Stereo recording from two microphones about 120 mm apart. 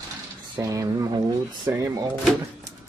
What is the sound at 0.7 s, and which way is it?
Speech, 35° right (ahead or behind).